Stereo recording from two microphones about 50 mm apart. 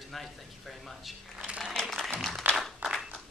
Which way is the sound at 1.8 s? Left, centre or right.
Centre.